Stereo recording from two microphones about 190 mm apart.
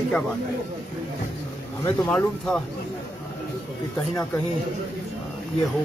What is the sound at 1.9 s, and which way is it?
Speech, 5° left (ahead or behind).